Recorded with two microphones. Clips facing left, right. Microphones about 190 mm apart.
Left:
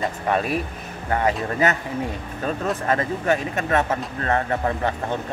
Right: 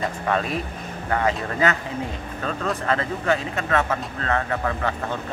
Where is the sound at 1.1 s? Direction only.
20° left (ahead or behind).